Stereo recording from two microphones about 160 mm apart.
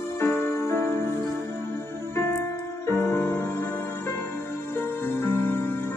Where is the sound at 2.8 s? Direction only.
15° left (ahead or behind).